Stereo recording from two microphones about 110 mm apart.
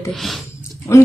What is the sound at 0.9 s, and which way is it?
Speech, 30° left (ahead or behind).